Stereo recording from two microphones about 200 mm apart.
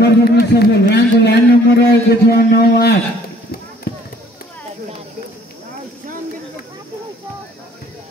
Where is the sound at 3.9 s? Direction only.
55° left (ahead or behind).